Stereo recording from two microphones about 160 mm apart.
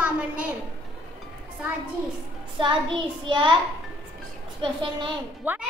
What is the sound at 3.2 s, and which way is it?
Speech, 30° right (ahead or behind).